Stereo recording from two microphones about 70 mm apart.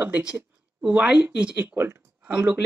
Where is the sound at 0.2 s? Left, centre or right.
Centre.